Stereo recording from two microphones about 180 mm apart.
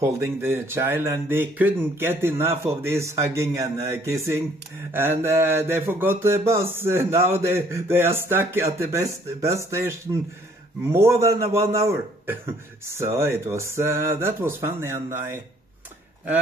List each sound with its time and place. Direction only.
0.0 s speech: 15° right (ahead or behind)